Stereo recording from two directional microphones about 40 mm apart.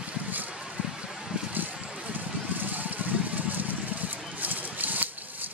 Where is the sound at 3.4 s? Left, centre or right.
Right.